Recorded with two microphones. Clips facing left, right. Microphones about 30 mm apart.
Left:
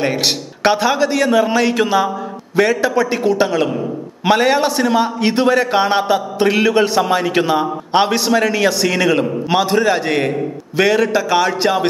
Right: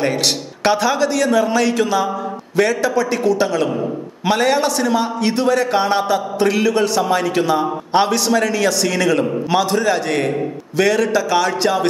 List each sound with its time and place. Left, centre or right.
0.7 s a man's voice: centre